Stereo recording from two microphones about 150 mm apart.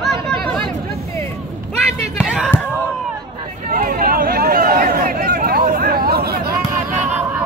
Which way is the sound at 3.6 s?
70° right (ahead or behind).